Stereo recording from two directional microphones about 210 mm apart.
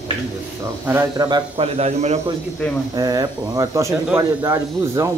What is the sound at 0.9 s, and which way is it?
A man's voice, 15° right (ahead or behind).